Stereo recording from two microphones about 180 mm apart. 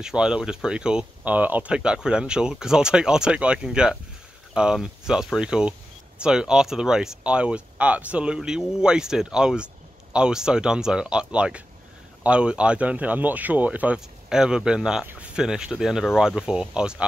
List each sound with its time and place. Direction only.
0.0 s speech: 5° right (ahead or behind)